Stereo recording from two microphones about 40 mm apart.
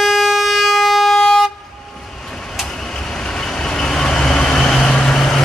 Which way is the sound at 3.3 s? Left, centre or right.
Centre.